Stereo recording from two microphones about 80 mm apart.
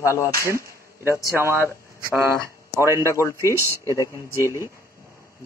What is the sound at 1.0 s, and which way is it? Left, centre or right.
Speech, right.